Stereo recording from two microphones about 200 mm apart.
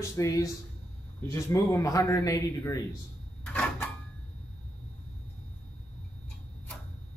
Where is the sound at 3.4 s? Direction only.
5° left (ahead or behind).